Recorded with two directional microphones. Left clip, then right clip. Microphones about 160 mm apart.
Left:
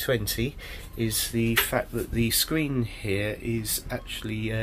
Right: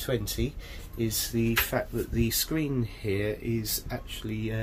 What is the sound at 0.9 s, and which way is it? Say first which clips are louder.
Speech: left 2 dB; 10° right (ahead or behind).